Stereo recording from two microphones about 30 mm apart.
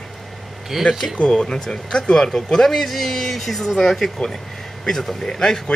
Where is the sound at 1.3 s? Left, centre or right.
Left.